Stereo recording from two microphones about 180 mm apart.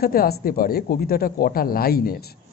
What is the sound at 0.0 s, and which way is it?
A man's voice, 55° left (ahead or behind).